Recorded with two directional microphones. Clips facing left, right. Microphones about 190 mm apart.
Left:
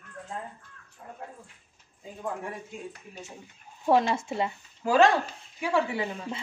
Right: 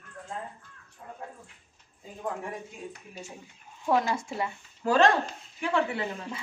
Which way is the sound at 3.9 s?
25° left (ahead or behind).